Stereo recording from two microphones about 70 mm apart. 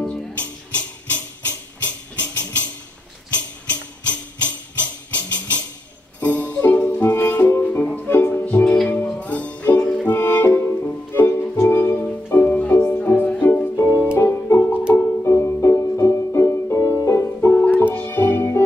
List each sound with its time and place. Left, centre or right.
0.0 s music: centre
8.1 s music: left
8.6 s music: centre
9.2 s music: left
13.7 s music: left